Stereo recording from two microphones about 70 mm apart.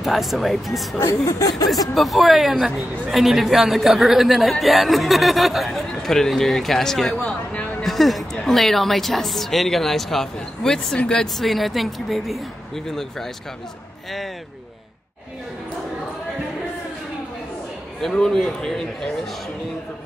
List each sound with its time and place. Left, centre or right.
0.0 s speech: centre
1.0 s speech: left
2.0 s speech: centre
18.0 s a man's voice: centre